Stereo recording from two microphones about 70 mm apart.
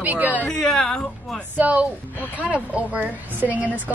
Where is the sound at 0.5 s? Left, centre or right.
Centre.